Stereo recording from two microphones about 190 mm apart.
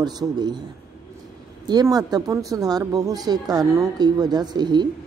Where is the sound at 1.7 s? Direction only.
20° right (ahead or behind).